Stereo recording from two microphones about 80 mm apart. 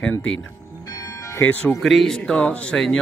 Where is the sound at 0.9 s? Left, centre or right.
Left.